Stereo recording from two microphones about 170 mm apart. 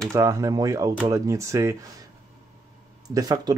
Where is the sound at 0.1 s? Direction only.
20° right (ahead or behind).